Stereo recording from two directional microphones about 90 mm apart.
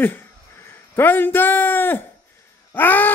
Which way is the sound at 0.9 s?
20° left (ahead or behind).